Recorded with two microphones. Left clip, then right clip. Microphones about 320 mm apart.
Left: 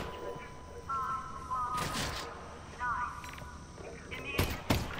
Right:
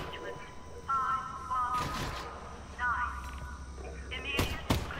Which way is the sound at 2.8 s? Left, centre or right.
Centre.